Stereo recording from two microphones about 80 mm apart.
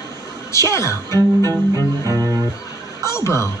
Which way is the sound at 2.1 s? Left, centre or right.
Right.